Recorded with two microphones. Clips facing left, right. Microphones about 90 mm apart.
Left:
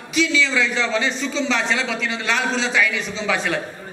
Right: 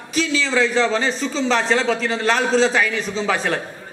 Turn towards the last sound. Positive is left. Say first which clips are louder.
# right 2 dB
turn(degrees=-40)  # may be behind; listen again after turning